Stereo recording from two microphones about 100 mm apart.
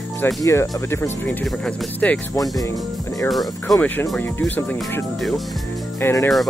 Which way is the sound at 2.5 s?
30° left (ahead or behind).